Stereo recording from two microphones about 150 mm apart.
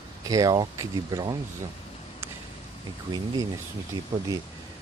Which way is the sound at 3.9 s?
25° right (ahead or behind).